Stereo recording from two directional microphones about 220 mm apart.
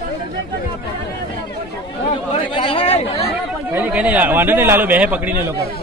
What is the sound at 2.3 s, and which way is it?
Speech, 25° left (ahead or behind).